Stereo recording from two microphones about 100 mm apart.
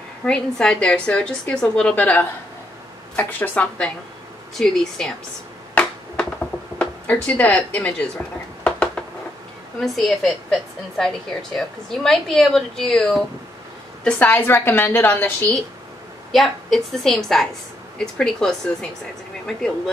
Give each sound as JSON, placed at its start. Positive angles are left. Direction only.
{"t": 0.2, "sound": "a woman's voice", "side_deg": 10}
{"t": 5.8, "sound": "a sound", "side_deg": 15}
{"t": 6.8, "sound": "speech", "side_deg": 15}
{"t": 8.6, "sound": "a sound", "side_deg": 10}
{"t": 9.8, "sound": "a woman's voice", "side_deg": 0}
{"t": 16.3, "sound": "a woman's voice", "side_deg": 0}